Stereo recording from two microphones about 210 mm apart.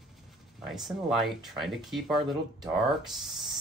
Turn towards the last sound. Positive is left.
turn(degrees=0)  # may be behind; listen again after turning